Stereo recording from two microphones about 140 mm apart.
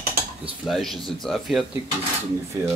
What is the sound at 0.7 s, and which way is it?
Speech, centre (ahead or behind).